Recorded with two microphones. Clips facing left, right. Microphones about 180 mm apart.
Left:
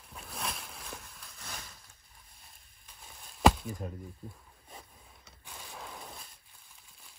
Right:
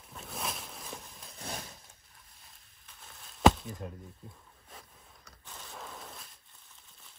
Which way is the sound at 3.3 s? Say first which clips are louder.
Right 1 dB; centre (ahead or behind).